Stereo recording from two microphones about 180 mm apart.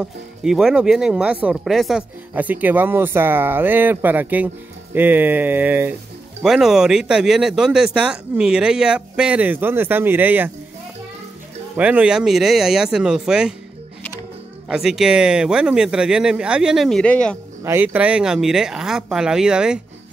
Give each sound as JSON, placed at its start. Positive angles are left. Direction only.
{"t": 0.0, "sound": "speech", "side_deg": -5}
{"t": 11.7, "sound": "speech", "side_deg": -10}
{"t": 14.7, "sound": "speech", "side_deg": -5}
{"t": 17.6, "sound": "speech", "side_deg": -10}